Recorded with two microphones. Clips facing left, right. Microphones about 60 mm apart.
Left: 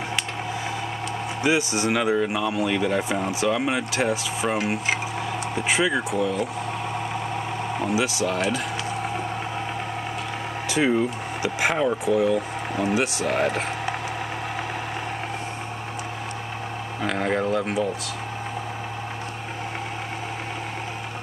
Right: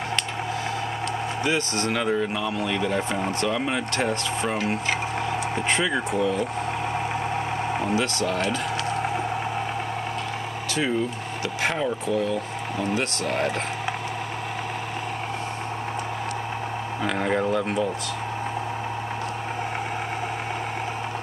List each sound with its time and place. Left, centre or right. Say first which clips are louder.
1.4 s speech: left 4 dB; centre
7.9 s speech: left 3 dB; centre
10.7 s speech: left 4 dB; left
17.0 s a sound: even; centre